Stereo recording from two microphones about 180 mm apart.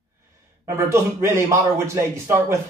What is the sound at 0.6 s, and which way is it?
Speech, 15° right (ahead or behind).